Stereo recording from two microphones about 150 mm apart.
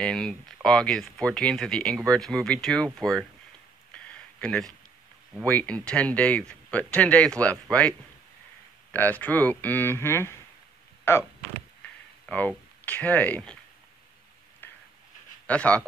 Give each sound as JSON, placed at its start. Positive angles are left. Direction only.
{"t": 0.0, "sound": "speech", "side_deg": 5}
{"t": 3.9, "sound": "a sound", "side_deg": 5}
{"t": 5.4, "sound": "speech", "side_deg": 10}
{"t": 8.9, "sound": "speech", "side_deg": 10}
{"t": 12.3, "sound": "speech", "side_deg": 10}
{"t": 14.6, "sound": "a sound", "side_deg": 15}
{"t": 15.4, "sound": "speech", "side_deg": 10}